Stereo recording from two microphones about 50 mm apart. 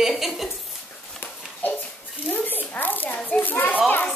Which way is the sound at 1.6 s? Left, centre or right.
Left.